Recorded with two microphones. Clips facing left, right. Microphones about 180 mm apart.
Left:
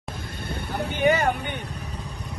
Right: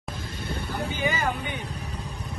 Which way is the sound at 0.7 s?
65° left (ahead or behind).